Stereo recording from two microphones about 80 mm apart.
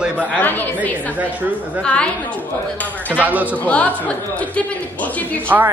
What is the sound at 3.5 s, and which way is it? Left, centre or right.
Speech, centre.